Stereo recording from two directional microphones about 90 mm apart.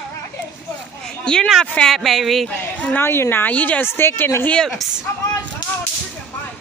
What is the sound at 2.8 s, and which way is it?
A woman's voice, 15° left (ahead or behind).